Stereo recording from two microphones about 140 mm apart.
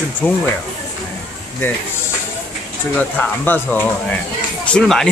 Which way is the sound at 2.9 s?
10° left (ahead or behind).